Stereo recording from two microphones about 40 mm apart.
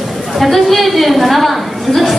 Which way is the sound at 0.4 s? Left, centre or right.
Centre.